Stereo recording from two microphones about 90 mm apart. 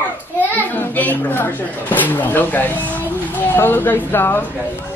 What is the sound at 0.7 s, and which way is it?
Speech, 20° left (ahead or behind).